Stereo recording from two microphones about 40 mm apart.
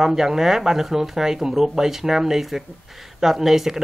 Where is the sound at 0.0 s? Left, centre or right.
Centre.